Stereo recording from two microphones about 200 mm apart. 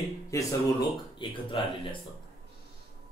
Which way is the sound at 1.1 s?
25° left (ahead or behind).